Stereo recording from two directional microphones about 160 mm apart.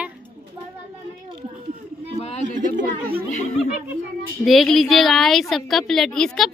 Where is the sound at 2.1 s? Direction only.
40° left (ahead or behind).